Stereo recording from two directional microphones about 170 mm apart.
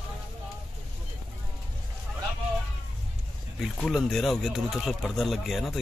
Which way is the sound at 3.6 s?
Centre (ahead or behind).